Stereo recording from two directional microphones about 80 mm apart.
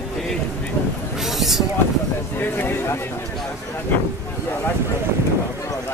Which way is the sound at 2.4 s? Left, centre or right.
Left.